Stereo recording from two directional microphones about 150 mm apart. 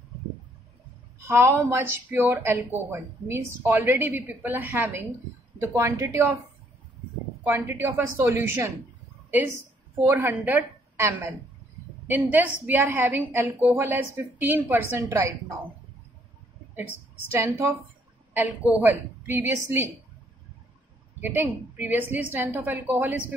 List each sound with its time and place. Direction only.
1.2 s a woman's voice: 15° right (ahead or behind)
7.4 s a woman's voice: 15° right (ahead or behind)
16.7 s a woman's voice: 15° right (ahead or behind)
18.8 s speech: 15° right (ahead or behind)
21.2 s speech: 15° right (ahead or behind)